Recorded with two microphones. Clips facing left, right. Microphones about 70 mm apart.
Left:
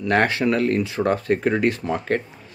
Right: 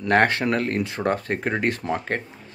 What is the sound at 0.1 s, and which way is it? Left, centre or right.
Speech, right.